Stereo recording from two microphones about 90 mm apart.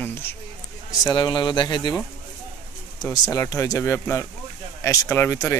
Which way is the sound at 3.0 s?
45° left (ahead or behind).